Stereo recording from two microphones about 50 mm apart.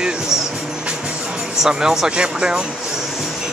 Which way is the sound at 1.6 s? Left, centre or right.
Centre.